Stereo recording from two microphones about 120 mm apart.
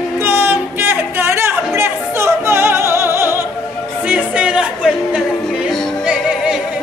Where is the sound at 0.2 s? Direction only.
20° right (ahead or behind).